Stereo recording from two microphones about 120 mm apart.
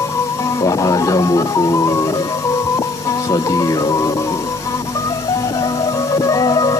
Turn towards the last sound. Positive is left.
turn(degrees=30)  # may be behind; listen again after turning